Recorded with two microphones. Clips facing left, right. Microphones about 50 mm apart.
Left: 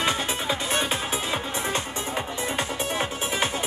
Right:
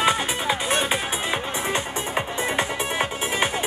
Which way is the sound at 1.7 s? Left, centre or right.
Right.